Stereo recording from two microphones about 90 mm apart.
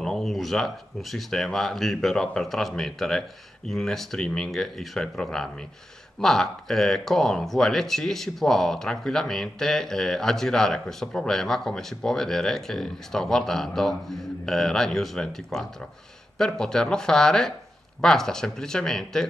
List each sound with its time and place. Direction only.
0.0 s speech: centre (ahead or behind)